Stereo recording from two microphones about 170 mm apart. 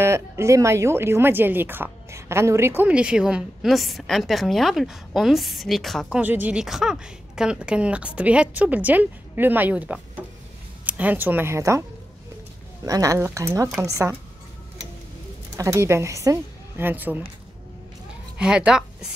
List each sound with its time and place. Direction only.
0.0 s speech: 15° right (ahead or behind)
12.8 s speech: 20° right (ahead or behind)
15.5 s a woman's voice: 15° right (ahead or behind)
18.4 s a woman's voice: 5° right (ahead or behind)